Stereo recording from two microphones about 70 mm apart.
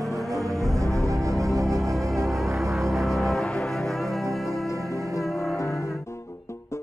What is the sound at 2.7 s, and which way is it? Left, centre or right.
Music, centre.